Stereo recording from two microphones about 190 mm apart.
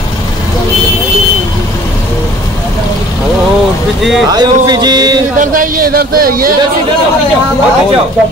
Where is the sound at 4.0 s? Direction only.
Centre (ahead or behind).